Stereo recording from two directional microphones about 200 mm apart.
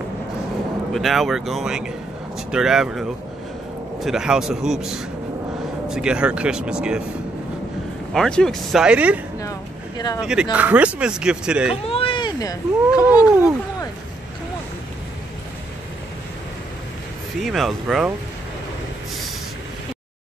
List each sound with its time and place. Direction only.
0.9 s speech: centre (ahead or behind)
8.1 s speech: 5° left (ahead or behind)
9.4 s a sound: 20° left (ahead or behind)
10.2 s speech: 5° right (ahead or behind)
11.8 s speech: 30° left (ahead or behind)
17.4 s speech: centre (ahead or behind)